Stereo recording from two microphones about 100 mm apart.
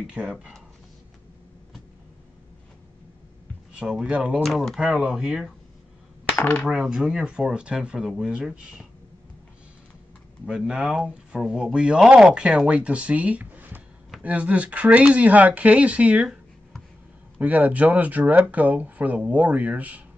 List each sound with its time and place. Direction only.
0.0 s speech: 10° right (ahead or behind)
3.8 s speech: 10° right (ahead or behind)
4.4 s speech: centre (ahead or behind)
6.3 s coin: 20° left (ahead or behind)
6.6 s speech: 5° right (ahead or behind)
10.4 s speech: 5° right (ahead or behind)
17.4 s speech: 15° right (ahead or behind)